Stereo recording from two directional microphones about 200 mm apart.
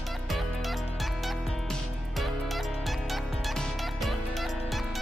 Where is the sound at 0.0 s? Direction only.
Centre (ahead or behind).